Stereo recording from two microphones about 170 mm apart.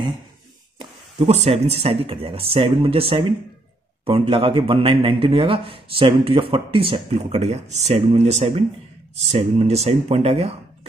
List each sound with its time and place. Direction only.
0.7 s a man's voice: 40° right (ahead or behind)